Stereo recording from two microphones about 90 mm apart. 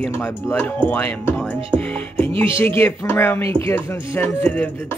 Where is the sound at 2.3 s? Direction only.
75° right (ahead or behind).